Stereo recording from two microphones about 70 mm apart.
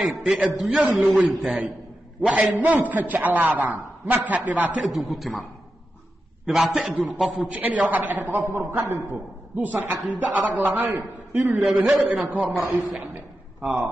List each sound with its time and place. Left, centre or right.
0.0 s a man's voice: centre
1.0 s a man's voice: right
2.5 s a man's voice: right
4.9 s a man's voice: centre
6.4 s a man's voice: centre
7.3 s a man's voice: right
11.6 s a man's voice: centre
12.3 s a man's voice: centre
13.6 s speech: right